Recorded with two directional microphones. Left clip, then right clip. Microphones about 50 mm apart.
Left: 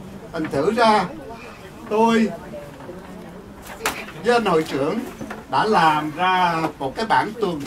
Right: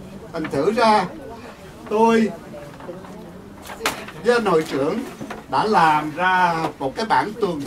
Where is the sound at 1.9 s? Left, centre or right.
Centre.